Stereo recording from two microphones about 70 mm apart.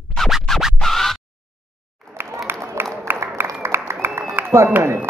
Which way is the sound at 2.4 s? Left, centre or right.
Right.